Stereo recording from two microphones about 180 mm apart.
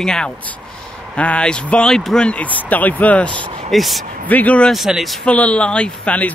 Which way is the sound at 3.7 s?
Centre (ahead or behind).